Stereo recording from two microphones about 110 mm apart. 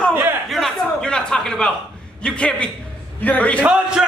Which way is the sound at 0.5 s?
Centre (ahead or behind).